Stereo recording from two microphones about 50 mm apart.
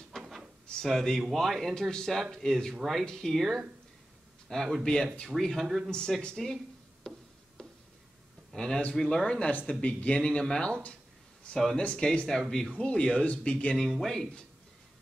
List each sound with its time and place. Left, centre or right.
0.1 s drawer open or close: centre
0.7 s speech: centre
2.7 s speech: centre
3.1 s speech: centre
3.3 s speech: centre
4.5 s speech: centre
5.3 s speech: centre
5.9 s a sound: centre
8.5 s speech: centre
12.7 s speech: left
13.7 s speech: centre